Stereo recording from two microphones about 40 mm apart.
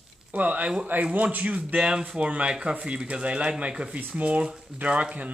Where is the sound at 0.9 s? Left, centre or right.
Right.